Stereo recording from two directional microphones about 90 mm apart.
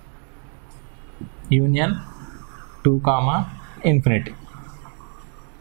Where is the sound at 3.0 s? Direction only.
15° right (ahead or behind).